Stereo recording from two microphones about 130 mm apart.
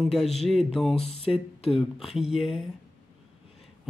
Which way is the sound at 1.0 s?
50° left (ahead or behind).